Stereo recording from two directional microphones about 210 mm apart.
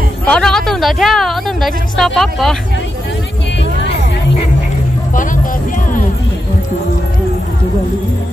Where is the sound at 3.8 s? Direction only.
30° left (ahead or behind).